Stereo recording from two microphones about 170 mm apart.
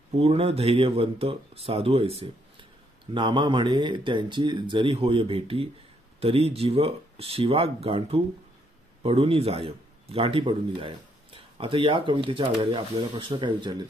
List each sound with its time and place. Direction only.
0.2 s speech: 35° right (ahead or behind)